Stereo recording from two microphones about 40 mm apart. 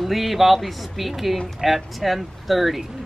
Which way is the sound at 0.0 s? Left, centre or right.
Centre.